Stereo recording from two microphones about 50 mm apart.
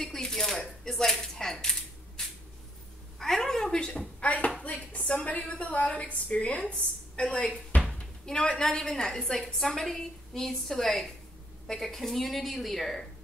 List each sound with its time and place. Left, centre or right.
0.0 s speech: centre
2.2 s a sound: centre
4.2 s a woman's voice: left
8.5 s a woman's voice: centre